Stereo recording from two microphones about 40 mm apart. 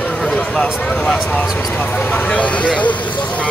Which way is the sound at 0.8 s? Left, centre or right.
Left.